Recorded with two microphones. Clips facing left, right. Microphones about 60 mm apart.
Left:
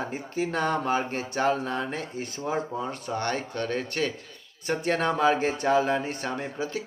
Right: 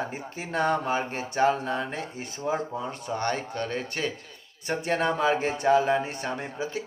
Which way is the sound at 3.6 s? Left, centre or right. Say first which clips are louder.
Left 1 dB; left.